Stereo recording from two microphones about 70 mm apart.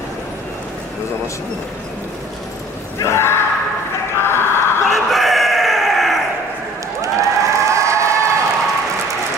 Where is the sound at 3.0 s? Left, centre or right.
Left.